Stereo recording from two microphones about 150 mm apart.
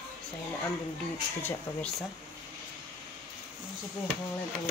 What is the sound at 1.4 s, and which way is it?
Speech, 15° left (ahead or behind).